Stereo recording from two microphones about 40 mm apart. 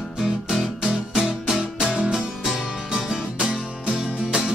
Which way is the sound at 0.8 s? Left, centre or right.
Centre.